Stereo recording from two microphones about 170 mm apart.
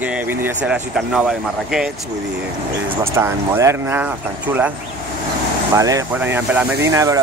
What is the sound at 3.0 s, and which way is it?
Speech, 15° right (ahead or behind).